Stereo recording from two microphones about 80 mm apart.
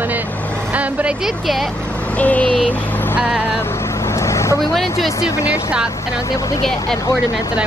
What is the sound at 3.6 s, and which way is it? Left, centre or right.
Vehicle, left.